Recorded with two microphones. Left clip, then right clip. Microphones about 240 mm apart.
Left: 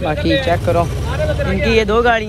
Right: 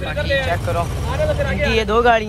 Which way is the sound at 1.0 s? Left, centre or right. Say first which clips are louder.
Even; right.